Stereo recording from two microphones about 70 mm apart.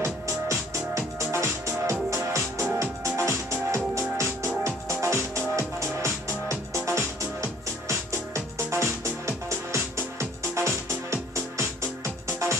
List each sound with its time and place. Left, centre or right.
0.0 s music: right